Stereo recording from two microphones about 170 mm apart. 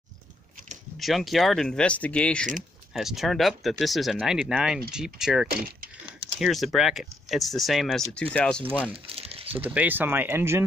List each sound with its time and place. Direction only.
0.9 s speech: centre (ahead or behind)
5.5 s speech: 60° right (ahead or behind)
6.4 s speech: centre (ahead or behind)
8.9 s crumpling: 35° right (ahead or behind)
9.6 s speech: 10° right (ahead or behind)